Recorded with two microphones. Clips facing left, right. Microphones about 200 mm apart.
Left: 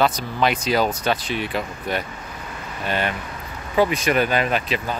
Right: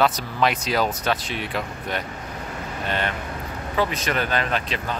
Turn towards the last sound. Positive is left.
turn(degrees=10)  # may be behind; listen again after turning